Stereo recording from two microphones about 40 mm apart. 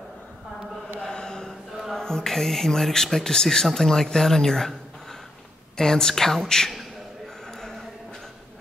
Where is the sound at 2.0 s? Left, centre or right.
Centre.